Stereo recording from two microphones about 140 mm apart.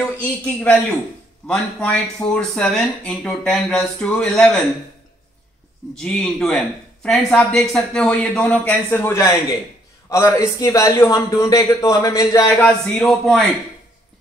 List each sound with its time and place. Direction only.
0.2 s speech: 10° left (ahead or behind)
5.9 s a man's voice: 5° left (ahead or behind); by 12.6 s 20° left (ahead or behind)
12.6 s speech: centre (ahead or behind)